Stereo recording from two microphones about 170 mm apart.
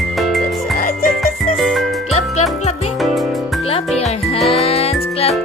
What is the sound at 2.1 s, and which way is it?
Music, 40° left (ahead or behind).